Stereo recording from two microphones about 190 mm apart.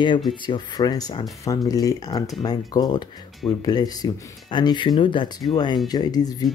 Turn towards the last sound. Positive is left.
turn(degrees=20)  # may be behind; listen again after turning